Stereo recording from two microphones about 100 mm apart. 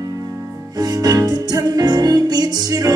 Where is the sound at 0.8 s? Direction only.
40° right (ahead or behind).